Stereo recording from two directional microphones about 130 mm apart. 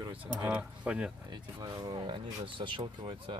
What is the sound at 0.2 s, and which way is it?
Speech, 10° right (ahead or behind).